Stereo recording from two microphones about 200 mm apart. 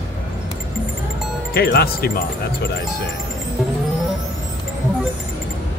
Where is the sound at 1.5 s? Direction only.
50° left (ahead or behind).